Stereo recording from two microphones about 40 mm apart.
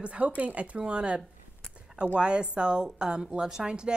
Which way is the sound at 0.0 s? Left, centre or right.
Right.